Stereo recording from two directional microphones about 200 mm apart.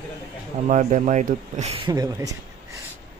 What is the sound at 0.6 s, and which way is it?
Speech, 40° right (ahead or behind).